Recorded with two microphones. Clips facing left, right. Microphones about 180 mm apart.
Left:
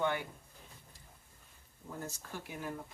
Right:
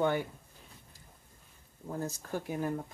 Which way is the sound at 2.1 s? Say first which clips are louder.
Right 9 dB; 45° right (ahead or behind).